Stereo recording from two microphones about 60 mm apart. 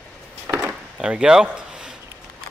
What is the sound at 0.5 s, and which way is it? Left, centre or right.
Door, right.